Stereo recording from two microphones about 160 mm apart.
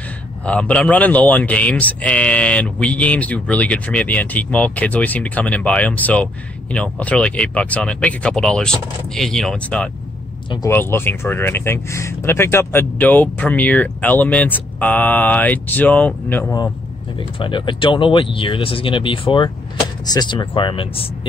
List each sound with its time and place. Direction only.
0.5 s speech: 10° left (ahead or behind)
17.4 s speech: 30° left (ahead or behind)